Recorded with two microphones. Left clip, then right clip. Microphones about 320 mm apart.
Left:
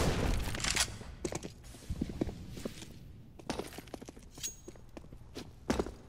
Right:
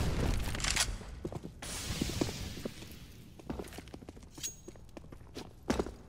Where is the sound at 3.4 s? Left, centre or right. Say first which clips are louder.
Left 4 dB; left.